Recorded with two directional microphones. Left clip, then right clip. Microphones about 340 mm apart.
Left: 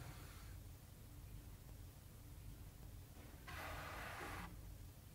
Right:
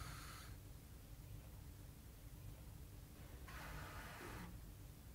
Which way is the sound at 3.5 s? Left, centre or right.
Left.